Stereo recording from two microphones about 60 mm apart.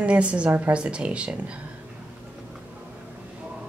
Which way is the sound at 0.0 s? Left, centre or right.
Centre.